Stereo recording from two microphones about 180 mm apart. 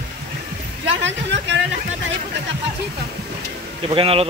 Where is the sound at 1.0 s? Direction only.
85° right.